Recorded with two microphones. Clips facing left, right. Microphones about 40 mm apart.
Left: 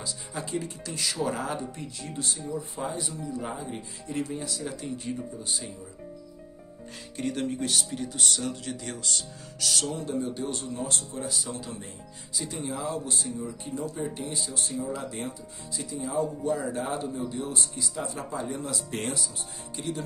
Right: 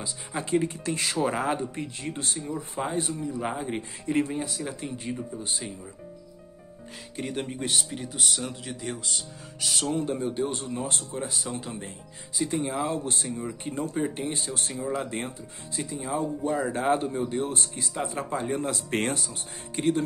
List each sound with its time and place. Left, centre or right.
0.0 s speech: right
7.2 s speech: centre
10.6 s speech: right